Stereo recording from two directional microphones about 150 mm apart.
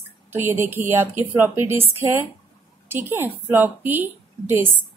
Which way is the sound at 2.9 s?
15° right (ahead or behind).